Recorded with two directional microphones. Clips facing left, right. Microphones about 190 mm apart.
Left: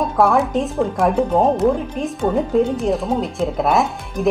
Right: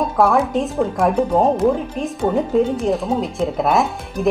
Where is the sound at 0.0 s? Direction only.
Centre (ahead or behind).